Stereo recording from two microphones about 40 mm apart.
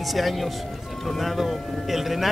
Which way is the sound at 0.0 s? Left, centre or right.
Centre.